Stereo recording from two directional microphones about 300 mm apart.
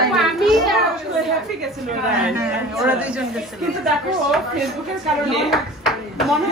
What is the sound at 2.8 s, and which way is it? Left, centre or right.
Speech, centre.